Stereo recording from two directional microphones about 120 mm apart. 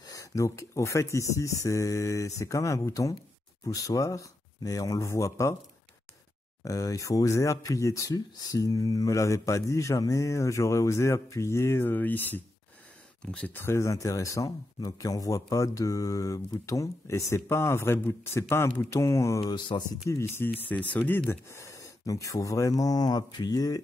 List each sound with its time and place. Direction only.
0.0 s speech: 30° left (ahead or behind)
6.6 s speech: 30° left (ahead or behind)
19.7 s speech: 50° left (ahead or behind)
20.1 s speech: 25° left (ahead or behind)